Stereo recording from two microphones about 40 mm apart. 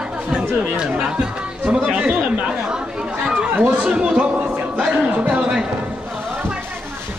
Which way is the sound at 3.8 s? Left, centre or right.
Right.